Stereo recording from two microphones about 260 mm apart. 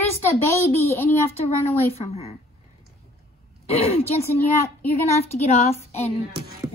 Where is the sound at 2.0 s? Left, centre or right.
Left.